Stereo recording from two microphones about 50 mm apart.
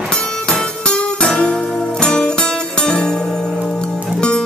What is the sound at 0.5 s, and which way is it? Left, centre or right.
Music, centre.